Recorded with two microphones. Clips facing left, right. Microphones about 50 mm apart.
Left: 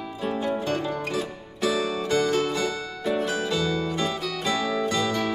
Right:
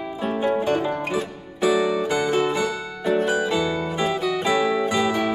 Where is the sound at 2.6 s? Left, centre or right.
Centre.